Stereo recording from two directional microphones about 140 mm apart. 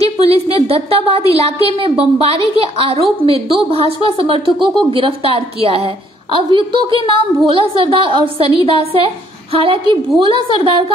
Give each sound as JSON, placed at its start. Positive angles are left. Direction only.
{"t": 0.2, "sound": "a woman's voice", "side_deg": -45}